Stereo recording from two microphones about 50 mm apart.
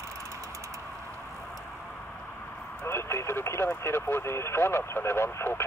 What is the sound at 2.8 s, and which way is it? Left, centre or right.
Radio, left.